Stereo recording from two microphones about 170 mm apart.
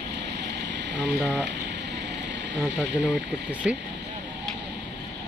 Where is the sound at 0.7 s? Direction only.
90° right.